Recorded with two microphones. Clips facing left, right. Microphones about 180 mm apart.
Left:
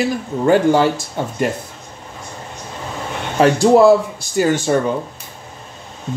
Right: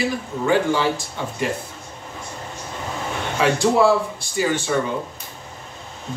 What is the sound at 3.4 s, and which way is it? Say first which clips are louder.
Speech: left 6 dB; 45° left (ahead or behind).